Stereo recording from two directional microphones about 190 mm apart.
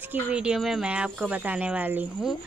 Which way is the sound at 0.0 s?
5° right (ahead or behind).